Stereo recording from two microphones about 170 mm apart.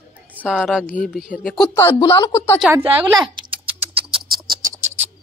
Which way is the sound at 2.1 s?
25° left (ahead or behind).